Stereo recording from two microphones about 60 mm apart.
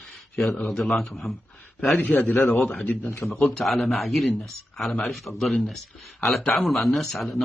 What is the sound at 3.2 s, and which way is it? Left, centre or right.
Speech, centre.